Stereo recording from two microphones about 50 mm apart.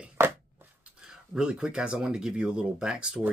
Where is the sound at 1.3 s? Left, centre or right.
Centre.